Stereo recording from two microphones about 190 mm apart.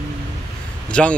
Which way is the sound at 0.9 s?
5° left (ahead or behind).